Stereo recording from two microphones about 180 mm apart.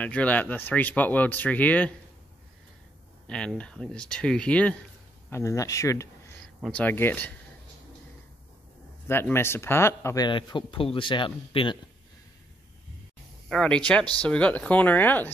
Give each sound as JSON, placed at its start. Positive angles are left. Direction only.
{"t": 0.0, "sound": "speech", "side_deg": 5}
{"t": 3.3, "sound": "speech", "side_deg": 5}
{"t": 9.0, "sound": "speech", "side_deg": 15}
{"t": 13.5, "sound": "speech", "side_deg": 5}